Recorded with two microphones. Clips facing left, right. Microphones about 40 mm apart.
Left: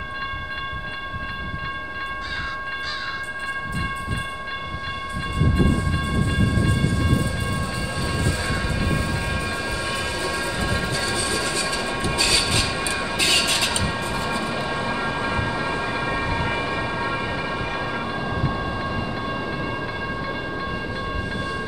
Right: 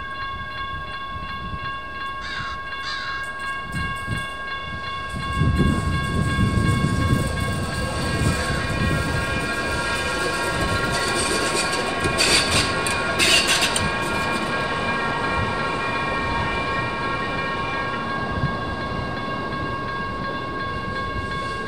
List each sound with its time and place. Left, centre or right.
9.6 s train: right
13.1 s music: right
13.9 s train: right
15.2 s vehicle: centre
16.0 s vehicle: centre
16.7 s train: centre